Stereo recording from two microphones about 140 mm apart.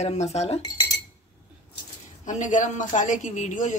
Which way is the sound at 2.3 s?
60° left (ahead or behind).